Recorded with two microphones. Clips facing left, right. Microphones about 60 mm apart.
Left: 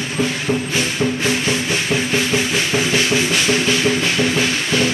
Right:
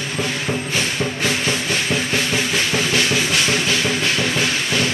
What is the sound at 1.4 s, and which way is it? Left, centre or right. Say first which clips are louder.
Music: left 1 dB; centre.